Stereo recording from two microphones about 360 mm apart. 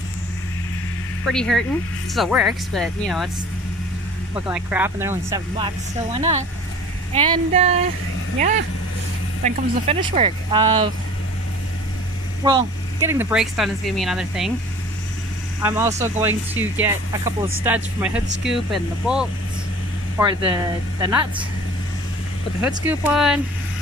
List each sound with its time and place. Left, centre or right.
1.2 s speech: centre
4.5 s speech: centre
7.2 s speech: centre
12.4 s speech: centre
15.6 s speech: centre
22.6 s speech: centre